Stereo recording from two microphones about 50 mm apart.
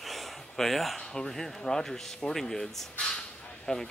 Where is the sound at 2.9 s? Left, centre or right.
Centre.